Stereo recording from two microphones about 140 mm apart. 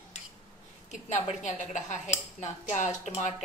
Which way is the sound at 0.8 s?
55° left (ahead or behind).